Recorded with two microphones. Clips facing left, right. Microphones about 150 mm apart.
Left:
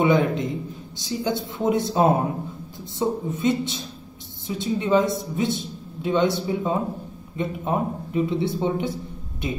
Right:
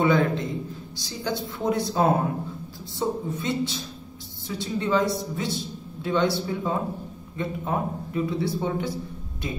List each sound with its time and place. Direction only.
0.0 s a man's voice: 20° left (ahead or behind)